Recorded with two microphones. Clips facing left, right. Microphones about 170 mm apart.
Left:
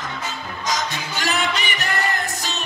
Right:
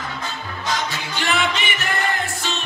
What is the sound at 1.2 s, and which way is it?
Music, 40° left (ahead or behind).